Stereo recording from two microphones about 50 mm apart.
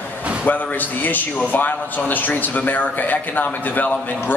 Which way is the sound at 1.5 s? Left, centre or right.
Left.